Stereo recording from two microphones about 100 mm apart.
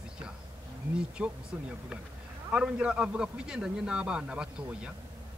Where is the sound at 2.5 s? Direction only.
10° right (ahead or behind).